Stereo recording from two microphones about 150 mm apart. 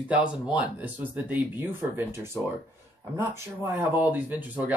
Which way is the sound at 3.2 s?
15° right (ahead or behind).